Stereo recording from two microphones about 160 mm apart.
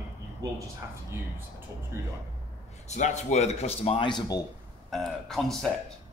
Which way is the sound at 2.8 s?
45° left (ahead or behind).